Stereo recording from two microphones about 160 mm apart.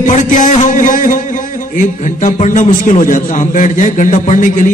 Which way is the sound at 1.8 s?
55° left (ahead or behind).